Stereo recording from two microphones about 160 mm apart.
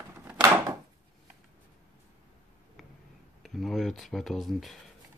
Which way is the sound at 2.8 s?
Centre (ahead or behind).